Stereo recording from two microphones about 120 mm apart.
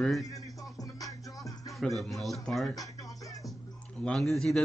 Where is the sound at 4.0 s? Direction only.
5° left (ahead or behind).